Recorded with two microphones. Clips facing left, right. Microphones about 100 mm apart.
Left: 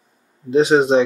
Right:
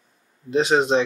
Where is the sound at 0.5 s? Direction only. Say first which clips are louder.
Left 5 dB; 15° left (ahead or behind).